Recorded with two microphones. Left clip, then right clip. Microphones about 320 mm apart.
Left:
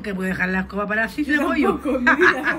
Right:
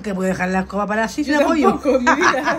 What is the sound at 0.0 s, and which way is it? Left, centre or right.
Speech, centre.